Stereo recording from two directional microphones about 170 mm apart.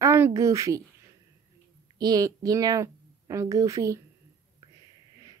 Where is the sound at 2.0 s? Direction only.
20° right (ahead or behind).